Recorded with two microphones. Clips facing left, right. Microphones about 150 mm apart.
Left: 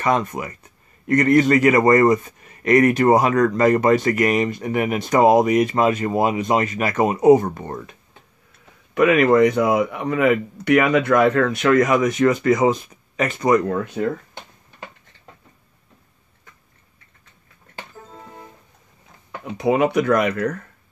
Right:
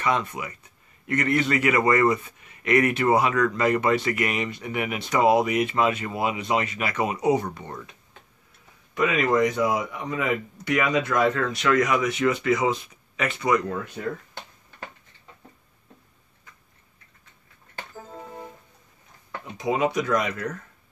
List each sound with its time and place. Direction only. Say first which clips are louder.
0.0 s a man's voice: left 5 dB; 45° left (ahead or behind)
8.9 s speech: left 7 dB; 60° left (ahead or behind)
19.4 s speech: left 6 dB; 60° left (ahead or behind)